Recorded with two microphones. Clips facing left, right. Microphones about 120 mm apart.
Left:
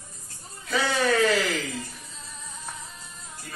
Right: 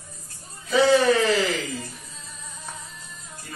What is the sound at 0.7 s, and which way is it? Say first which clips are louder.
Speech: right 7 dB; centre (ahead or behind).